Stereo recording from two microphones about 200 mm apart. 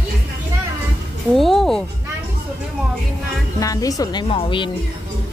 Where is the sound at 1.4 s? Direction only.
Centre (ahead or behind).